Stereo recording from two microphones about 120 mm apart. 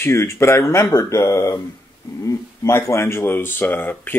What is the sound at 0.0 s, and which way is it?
Speech, 20° left (ahead or behind).